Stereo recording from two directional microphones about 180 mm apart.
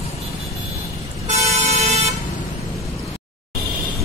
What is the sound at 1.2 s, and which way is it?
Vehicle, 40° right (ahead or behind).